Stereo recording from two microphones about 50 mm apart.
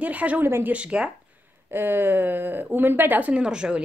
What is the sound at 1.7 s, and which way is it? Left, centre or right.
A woman's voice, right.